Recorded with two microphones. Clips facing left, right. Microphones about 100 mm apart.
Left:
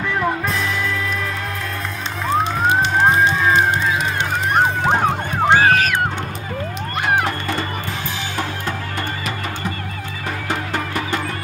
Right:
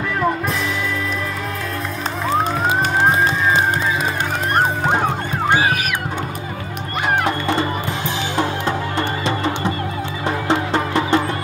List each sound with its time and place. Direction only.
4.6 s music: 5° right (ahead or behind)
7.2 s music: 20° right (ahead or behind)
10.5 s music: 25° right (ahead or behind)